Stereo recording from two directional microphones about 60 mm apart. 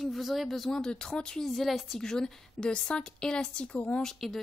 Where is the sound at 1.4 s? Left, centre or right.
Centre.